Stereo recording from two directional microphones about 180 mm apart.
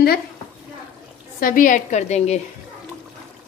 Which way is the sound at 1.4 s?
50° left (ahead or behind).